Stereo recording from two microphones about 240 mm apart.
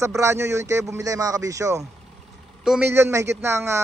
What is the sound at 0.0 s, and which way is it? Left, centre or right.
A man's voice, centre.